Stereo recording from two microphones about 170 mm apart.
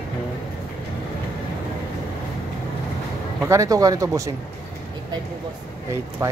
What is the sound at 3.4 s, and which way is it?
Speech, 20° right (ahead or behind).